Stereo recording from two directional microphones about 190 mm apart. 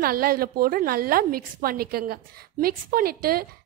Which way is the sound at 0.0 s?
50° right (ahead or behind).